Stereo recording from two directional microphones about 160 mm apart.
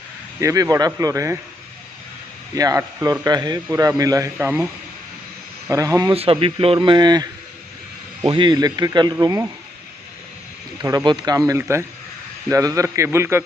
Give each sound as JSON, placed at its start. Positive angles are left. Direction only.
{"t": 0.4, "sound": "a man's voice", "side_deg": -20}
{"t": 2.5, "sound": "a man's voice", "side_deg": -20}
{"t": 5.7, "sound": "a man's voice", "side_deg": -20}
{"t": 6.1, "sound": "a man's voice", "side_deg": -35}
{"t": 11.1, "sound": "a man's voice", "side_deg": -25}